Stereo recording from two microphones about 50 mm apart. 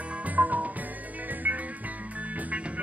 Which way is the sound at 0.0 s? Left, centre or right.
Right.